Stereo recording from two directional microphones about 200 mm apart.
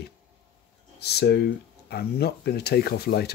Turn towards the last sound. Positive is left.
turn(degrees=55)  # may be behind; listen again after turning